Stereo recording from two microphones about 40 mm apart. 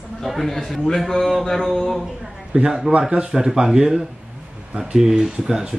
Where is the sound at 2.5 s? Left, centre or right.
Centre.